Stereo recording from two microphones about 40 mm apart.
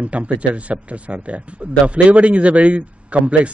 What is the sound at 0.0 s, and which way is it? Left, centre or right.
Speech, right.